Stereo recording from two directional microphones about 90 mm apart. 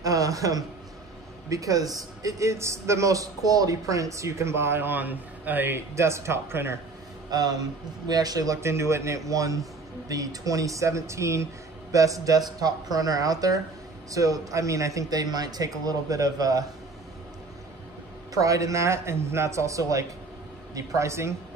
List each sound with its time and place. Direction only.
0.0 s a sound: 40° right (ahead or behind)
1.5 s a man's voice: 40° right (ahead or behind); by 5.8 s 20° right (ahead or behind)
5.9 s speech: 30° right (ahead or behind)
7.2 s a man's voice: 45° right (ahead or behind)
8.5 s a man's voice: 30° right (ahead or behind)
18.3 s a man's voice: 40° right (ahead or behind)